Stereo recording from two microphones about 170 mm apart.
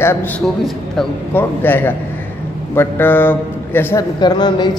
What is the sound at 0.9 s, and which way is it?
A man's voice, 10° left (ahead or behind).